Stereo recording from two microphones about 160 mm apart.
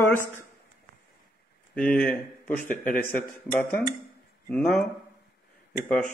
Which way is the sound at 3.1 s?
10° left (ahead or behind).